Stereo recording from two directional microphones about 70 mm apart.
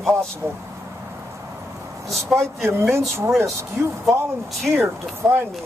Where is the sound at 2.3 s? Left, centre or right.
Centre.